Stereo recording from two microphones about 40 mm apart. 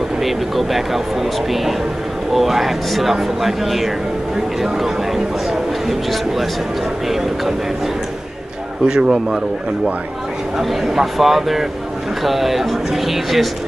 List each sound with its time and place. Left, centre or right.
0.2 s speech: centre
8.8 s speech: centre
10.6 s speech: centre